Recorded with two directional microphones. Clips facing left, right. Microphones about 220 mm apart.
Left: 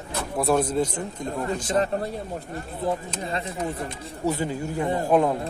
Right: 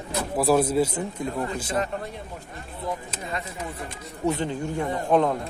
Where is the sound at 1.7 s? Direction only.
35° left (ahead or behind).